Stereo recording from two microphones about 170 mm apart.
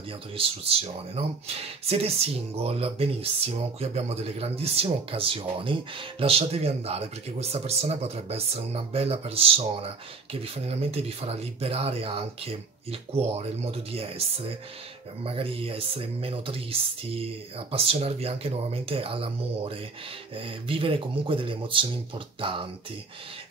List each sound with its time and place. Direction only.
0.4 s speech: 35° right (ahead or behind)
15.2 s speech: 35° right (ahead or behind)